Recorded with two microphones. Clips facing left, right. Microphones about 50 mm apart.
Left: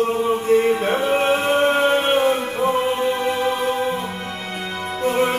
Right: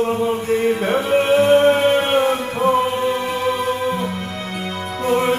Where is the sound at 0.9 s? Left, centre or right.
Left.